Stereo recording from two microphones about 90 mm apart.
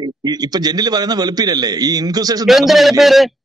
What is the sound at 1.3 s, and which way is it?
Speech, 45° right (ahead or behind).